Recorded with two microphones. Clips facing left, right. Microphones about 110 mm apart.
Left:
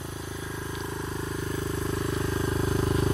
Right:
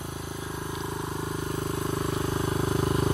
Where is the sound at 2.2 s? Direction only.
30° right (ahead or behind).